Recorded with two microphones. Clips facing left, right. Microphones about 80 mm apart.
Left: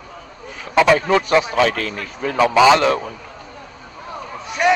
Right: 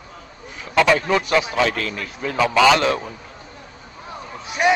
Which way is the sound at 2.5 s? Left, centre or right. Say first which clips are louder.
Left 3 dB; centre.